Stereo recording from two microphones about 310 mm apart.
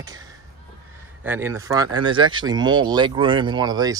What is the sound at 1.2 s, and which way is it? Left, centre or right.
Speech, centre.